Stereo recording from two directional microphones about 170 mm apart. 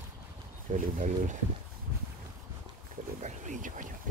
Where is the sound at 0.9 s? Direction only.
50° right (ahead or behind).